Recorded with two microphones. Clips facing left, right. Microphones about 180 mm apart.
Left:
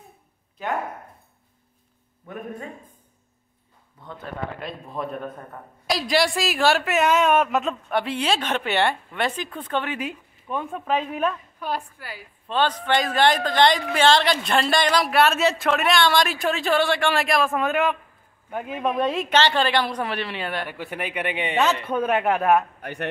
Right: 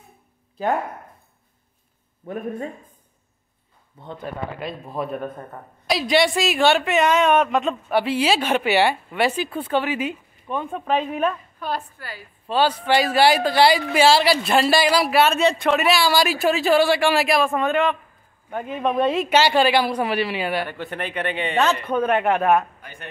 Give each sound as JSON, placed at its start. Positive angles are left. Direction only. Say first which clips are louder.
{"t": 0.6, "sound": "speech", "louder": "right 6 dB", "side_deg": -35}
{"t": 4.0, "sound": "speech", "louder": "right 5 dB", "side_deg": -25}
{"t": 4.6, "sound": "a man's voice", "louder": "right 3 dB", "side_deg": -5}
{"t": 11.6, "sound": "a man's voice", "louder": "right 1 dB", "side_deg": 10}
{"t": 12.4, "sound": "a woman's voice", "louder": "right 3 dB", "side_deg": -10}
{"t": 20.6, "sound": "a man's voice", "louder": "right 2 dB", "side_deg": 10}
{"t": 22.8, "sound": "speech", "louder": "left 10 dB", "side_deg": 65}